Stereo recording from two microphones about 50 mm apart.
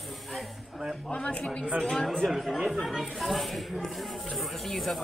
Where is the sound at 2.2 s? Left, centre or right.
Centre.